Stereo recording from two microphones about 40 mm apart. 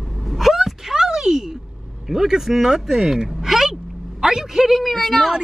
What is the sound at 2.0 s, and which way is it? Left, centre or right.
A man's voice, centre.